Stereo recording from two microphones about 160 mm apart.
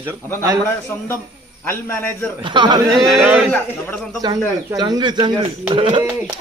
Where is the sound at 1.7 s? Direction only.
15° left (ahead or behind).